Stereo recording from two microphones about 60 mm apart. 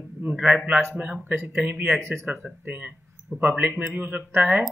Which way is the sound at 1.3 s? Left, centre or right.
Right.